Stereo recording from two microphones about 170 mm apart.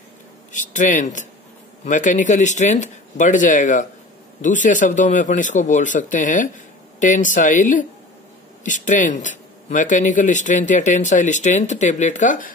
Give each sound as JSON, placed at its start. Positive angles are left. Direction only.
{"t": 0.5, "sound": "speech", "side_deg": 45}